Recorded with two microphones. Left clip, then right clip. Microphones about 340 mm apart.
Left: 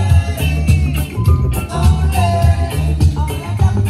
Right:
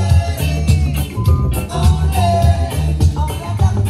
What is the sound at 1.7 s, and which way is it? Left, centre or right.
Music, right.